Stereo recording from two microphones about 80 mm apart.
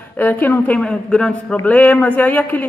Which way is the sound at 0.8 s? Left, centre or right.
Centre.